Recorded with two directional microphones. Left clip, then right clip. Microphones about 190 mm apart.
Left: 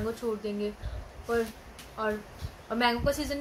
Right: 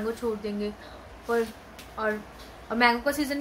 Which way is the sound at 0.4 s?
5° right (ahead or behind).